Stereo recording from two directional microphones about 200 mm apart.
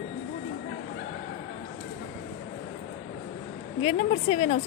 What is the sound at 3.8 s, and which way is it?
Speech, 30° left (ahead or behind).